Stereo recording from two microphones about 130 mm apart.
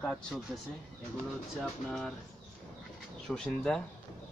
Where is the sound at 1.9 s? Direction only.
5° left (ahead or behind).